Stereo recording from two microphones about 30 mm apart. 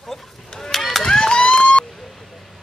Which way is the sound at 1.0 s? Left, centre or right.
Left.